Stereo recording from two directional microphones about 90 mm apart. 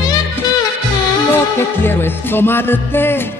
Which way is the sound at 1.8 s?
25° left (ahead or behind).